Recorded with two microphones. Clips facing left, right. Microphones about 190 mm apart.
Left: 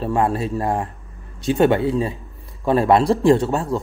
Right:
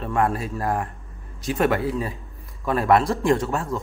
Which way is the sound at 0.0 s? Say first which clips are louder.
Left 3 dB; 30° left (ahead or behind).